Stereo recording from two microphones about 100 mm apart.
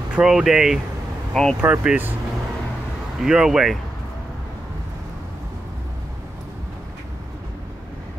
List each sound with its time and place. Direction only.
0.1 s speech: 5° right (ahead or behind)
1.3 s speech: 5° left (ahead or behind)
1.6 s speech: 15° right (ahead or behind)
3.2 s speech: 5° right (ahead or behind)